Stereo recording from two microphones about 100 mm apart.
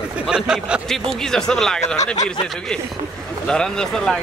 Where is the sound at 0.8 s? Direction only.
5° left (ahead or behind).